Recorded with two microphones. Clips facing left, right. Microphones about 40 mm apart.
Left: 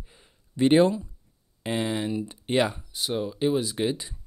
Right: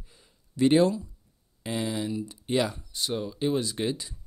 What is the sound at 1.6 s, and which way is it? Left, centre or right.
Speech, left.